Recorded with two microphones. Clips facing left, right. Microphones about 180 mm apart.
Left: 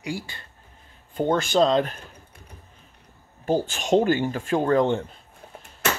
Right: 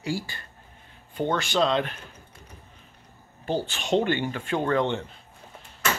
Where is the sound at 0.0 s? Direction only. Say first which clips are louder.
Right 1 dB; 20° left (ahead or behind).